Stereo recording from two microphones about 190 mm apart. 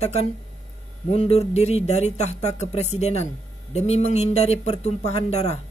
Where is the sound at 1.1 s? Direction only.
35° left (ahead or behind).